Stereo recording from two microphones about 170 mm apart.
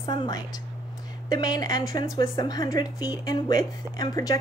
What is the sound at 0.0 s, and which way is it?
A woman's voice, 25° left (ahead or behind).